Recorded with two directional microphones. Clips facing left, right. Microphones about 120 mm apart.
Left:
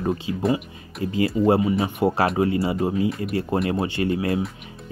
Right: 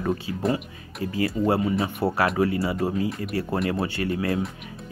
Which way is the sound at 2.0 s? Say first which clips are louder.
Left 2 dB; 25° left (ahead or behind).